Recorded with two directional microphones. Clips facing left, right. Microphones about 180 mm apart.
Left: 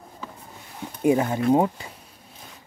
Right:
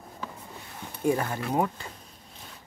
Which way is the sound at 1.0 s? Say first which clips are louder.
Left 7 dB; 20° left (ahead or behind).